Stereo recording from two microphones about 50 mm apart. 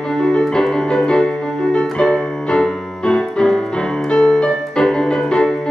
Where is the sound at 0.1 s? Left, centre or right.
Centre.